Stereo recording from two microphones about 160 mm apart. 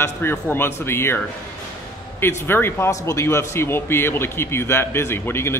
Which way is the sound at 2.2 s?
15° left (ahead or behind).